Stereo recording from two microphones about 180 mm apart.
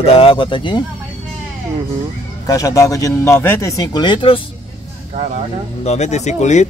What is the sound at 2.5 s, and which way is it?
A man's voice, 20° left (ahead or behind).